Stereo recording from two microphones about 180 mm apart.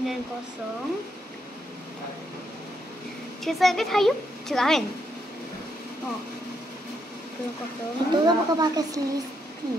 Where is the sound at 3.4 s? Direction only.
Centre (ahead or behind).